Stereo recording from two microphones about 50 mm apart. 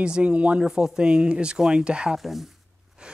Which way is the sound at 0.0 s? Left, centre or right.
Right.